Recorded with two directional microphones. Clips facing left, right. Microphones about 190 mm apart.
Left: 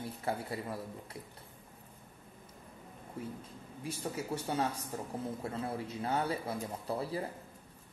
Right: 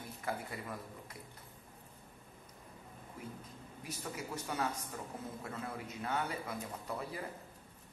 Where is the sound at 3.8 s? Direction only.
30° left (ahead or behind).